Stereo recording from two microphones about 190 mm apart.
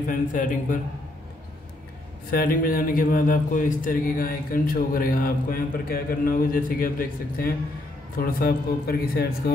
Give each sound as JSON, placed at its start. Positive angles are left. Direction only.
{"t": 0.1, "sound": "a man's voice", "side_deg": 45}
{"t": 2.3, "sound": "a man's voice", "side_deg": 50}